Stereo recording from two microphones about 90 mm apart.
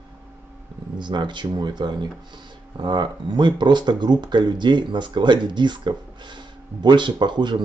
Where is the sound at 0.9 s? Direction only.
60° right (ahead or behind).